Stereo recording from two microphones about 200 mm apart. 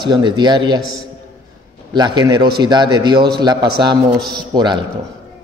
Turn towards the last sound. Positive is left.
turn(degrees=-20)  # may be behind; listen again after turning